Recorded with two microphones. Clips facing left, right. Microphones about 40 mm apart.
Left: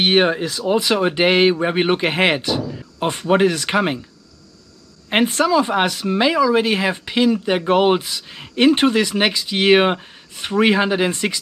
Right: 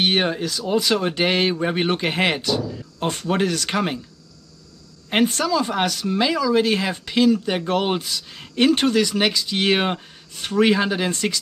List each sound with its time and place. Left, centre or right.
0.0 s speech: centre
5.1 s speech: left